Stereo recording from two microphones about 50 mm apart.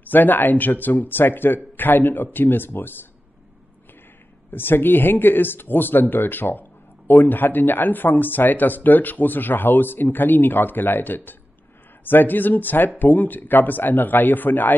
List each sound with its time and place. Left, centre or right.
0.0 s a man's voice: left
4.5 s a man's voice: left